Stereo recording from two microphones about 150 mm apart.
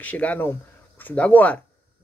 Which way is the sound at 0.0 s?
10° left (ahead or behind).